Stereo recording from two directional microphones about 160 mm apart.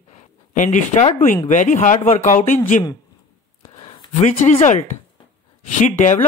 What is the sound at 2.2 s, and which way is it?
Speech, 55° left (ahead or behind).